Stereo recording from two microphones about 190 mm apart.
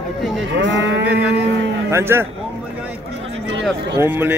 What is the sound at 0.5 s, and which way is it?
Cattle, 70° right (ahead or behind).